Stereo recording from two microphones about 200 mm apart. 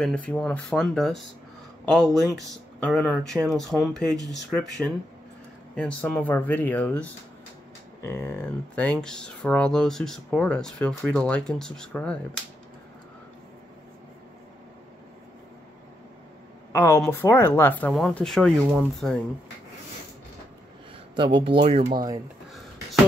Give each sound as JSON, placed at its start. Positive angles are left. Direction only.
{"t": 0.3, "sound": "speech", "side_deg": 5}
{"t": 5.8, "sound": "speech", "side_deg": 5}
{"t": 16.7, "sound": "speech", "side_deg": 10}
{"t": 21.2, "sound": "speech", "side_deg": -25}